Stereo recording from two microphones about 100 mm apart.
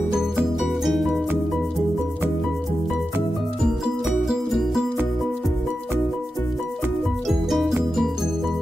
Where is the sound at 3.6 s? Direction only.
5° right (ahead or behind).